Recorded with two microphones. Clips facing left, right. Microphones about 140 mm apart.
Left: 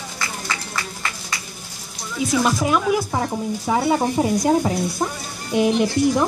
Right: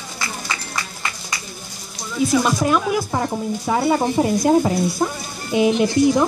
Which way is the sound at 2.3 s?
5° left (ahead or behind).